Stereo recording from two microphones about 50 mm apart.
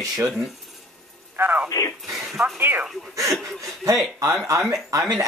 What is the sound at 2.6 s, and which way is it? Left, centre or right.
Speech, right.